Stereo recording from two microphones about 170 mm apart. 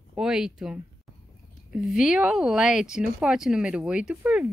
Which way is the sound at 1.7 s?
5° right (ahead or behind).